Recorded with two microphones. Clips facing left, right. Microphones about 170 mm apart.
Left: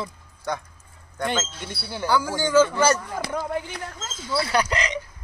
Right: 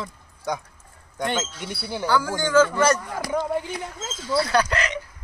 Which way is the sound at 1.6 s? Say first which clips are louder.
Right 2 dB; 10° right (ahead or behind).